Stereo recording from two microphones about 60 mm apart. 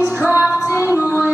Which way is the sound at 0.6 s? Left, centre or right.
Left.